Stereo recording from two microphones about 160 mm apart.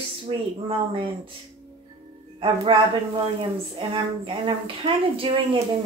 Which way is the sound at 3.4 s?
30° right (ahead or behind).